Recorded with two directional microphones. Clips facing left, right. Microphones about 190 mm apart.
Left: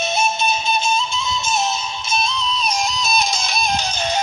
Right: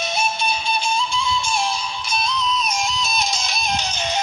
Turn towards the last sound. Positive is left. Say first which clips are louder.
# left 3 dB
turn(degrees=45)  # may be behind; listen again after turning